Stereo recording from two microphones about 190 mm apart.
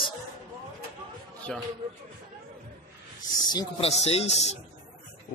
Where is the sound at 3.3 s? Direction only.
20° left (ahead or behind).